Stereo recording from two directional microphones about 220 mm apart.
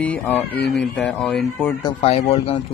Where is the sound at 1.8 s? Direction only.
25° left (ahead or behind).